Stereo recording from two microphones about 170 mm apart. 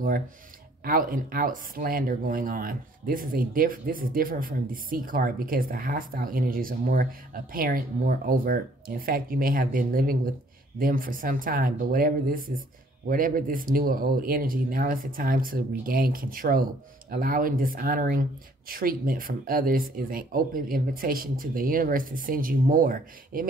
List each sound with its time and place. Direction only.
0.8 s speech: 55° right (ahead or behind)